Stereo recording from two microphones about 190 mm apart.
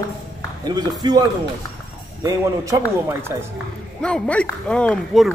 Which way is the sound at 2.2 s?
15° right (ahead or behind).